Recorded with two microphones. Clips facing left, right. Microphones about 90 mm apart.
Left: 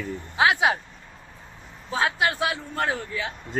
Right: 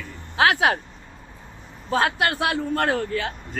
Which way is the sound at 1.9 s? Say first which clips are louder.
Right 2 dB; 55° right (ahead or behind).